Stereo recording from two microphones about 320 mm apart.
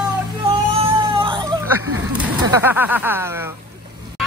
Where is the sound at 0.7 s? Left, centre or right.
Centre.